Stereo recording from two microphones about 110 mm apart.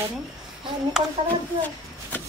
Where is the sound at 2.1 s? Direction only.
15° left (ahead or behind).